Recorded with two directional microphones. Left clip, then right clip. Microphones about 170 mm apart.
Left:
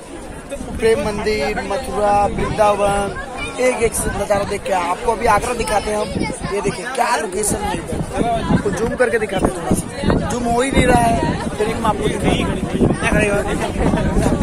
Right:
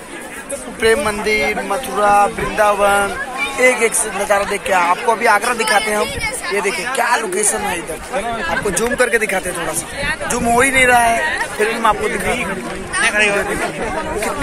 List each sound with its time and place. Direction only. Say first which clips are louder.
0.8 s speech: right 2 dB; centre (ahead or behind)
8.9 s speech: right 2 dB; 15° right (ahead or behind)
10.6 s speech: right 3 dB; 5° right (ahead or behind)
13.0 s speech: right 6 dB; 55° left (ahead or behind)